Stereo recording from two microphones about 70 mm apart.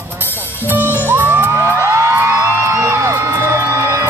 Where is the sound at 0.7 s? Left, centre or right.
Right.